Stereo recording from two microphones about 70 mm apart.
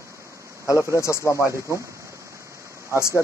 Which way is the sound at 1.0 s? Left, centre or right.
Left.